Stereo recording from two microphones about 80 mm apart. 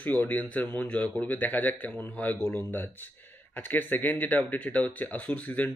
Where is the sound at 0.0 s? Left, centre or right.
Left.